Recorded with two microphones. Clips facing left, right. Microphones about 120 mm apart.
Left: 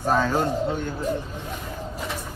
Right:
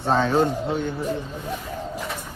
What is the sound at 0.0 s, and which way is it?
Speech, 25° right (ahead or behind).